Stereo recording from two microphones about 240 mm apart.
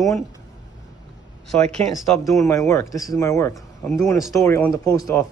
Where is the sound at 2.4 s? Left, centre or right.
Centre.